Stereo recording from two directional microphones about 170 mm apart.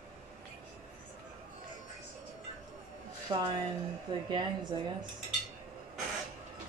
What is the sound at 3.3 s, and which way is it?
Speech, 25° right (ahead or behind).